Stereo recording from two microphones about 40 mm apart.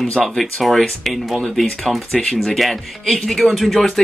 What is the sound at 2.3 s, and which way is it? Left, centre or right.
Speech, centre.